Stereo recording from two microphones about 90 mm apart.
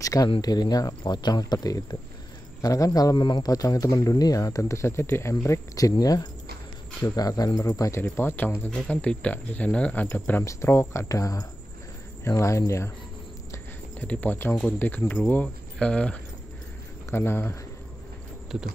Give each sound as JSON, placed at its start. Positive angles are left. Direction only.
{"t": 0.0, "sound": "a sound", "side_deg": 40}
{"t": 0.4, "sound": "speech", "side_deg": 50}
{"t": 3.2, "sound": "speech", "side_deg": 55}
{"t": 8.0, "sound": "speech", "side_deg": 20}
{"t": 8.6, "sound": "speech", "side_deg": 10}
{"t": 10.4, "sound": "speech", "side_deg": 30}
{"t": 13.9, "sound": "speech", "side_deg": 15}
{"t": 17.1, "sound": "speech", "side_deg": 25}